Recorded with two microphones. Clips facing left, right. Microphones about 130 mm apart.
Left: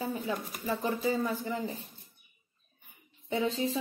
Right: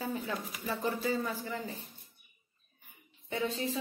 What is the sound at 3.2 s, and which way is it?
Speech, 20° left (ahead or behind).